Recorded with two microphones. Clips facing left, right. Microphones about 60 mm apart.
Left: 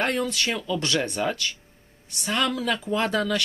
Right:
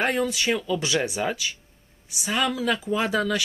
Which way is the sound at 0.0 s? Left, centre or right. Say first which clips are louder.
Right 1 dB; centre.